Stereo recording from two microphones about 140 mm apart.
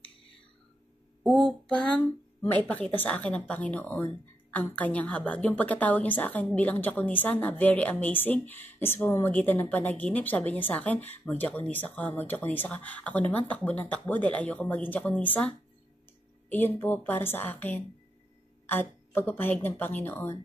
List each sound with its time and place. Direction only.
1.2 s speech: 5° left (ahead or behind)